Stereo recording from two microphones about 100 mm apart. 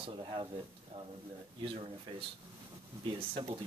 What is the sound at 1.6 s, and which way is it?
Speech, 60° right (ahead or behind).